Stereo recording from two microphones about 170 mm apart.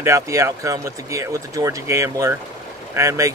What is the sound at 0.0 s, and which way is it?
Speech, 20° right (ahead or behind).